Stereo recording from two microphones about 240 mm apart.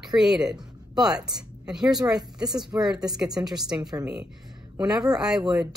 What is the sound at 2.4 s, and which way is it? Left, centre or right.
Speech, centre.